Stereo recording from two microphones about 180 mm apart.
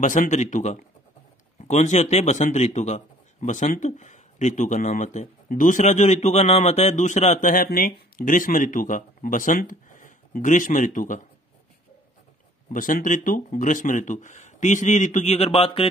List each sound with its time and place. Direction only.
0.0 s a man's voice: 45° left (ahead or behind)
12.7 s a man's voice: 45° left (ahead or behind); by 15.9 s 30° left (ahead or behind)